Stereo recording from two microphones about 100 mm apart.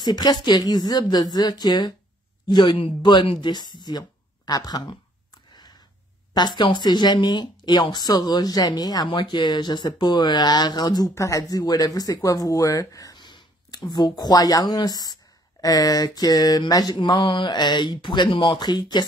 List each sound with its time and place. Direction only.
0.0 s speech: 45° left (ahead or behind)
5.5 s a sound: 40° left (ahead or behind)
6.3 s speech: 50° left (ahead or behind)